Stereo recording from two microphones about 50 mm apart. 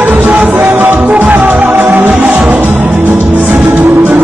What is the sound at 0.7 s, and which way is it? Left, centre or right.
Music, right.